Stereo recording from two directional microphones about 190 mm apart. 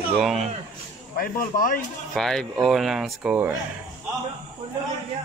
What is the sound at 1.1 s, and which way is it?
Speech, 50° left (ahead or behind).